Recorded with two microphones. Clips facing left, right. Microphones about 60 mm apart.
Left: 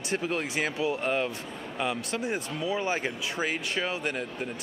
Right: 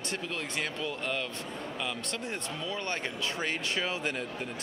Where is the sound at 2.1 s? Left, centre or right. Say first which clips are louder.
Left 5 dB; centre.